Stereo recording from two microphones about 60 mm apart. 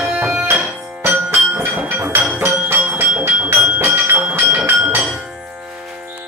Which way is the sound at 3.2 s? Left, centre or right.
Right.